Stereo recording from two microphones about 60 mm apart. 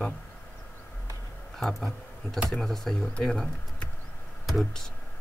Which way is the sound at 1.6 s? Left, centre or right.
Centre.